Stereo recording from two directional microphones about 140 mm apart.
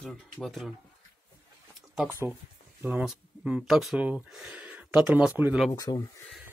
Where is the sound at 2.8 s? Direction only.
10° right (ahead or behind).